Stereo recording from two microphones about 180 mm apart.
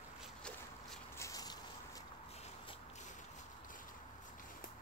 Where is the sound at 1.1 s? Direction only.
15° left (ahead or behind).